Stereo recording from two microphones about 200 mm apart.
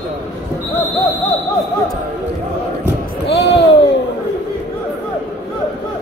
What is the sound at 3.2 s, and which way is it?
Basketball bounce, 60° left (ahead or behind).